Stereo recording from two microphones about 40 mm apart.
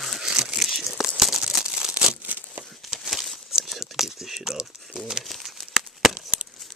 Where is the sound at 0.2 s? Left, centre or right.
Centre.